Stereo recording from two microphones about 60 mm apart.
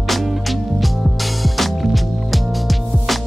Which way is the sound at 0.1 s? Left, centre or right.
Centre.